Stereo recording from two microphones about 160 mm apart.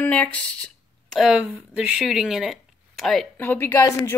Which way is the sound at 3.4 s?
15° left (ahead or behind).